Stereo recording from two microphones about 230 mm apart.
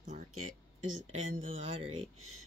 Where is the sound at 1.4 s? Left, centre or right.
Right.